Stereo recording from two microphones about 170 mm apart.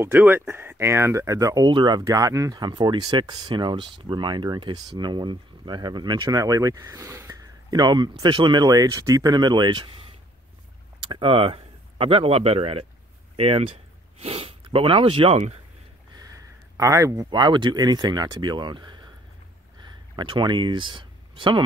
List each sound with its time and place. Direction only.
0.0 s speech: 10° right (ahead or behind); by 10.0 s 25° right (ahead or behind)
11.1 s speech: 30° right (ahead or behind)
16.7 s speech: 20° right (ahead or behind)
20.2 s speech: 25° right (ahead or behind)